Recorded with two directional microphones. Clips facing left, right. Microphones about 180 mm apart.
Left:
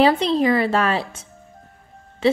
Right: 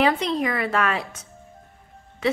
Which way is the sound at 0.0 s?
30° left (ahead or behind).